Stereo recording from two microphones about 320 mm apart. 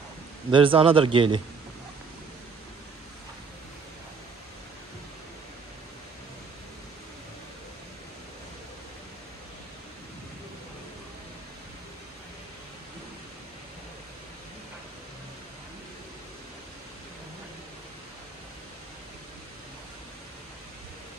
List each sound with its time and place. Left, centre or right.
0.5 s speech: centre